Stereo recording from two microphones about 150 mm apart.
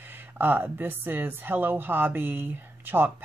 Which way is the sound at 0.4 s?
15° right (ahead or behind).